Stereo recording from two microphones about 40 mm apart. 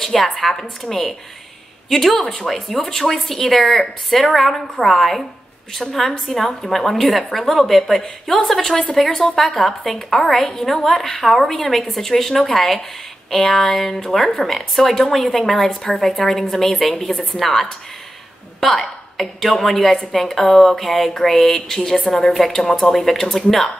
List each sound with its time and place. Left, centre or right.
0.0 s a woman's voice: centre
18.6 s a sound: centre
19.5 s a woman's voice: centre
22.3 s a woman's voice: centre
22.6 s speech: centre